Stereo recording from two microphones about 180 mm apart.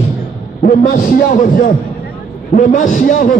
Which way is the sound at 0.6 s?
55° left (ahead or behind).